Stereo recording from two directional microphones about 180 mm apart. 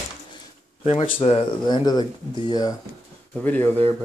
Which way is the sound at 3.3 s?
10° left (ahead or behind).